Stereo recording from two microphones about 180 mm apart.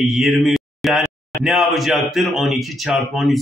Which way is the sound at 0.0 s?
Centre (ahead or behind).